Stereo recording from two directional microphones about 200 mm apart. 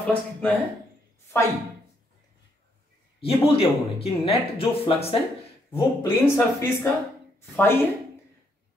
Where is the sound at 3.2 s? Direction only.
30° left (ahead or behind).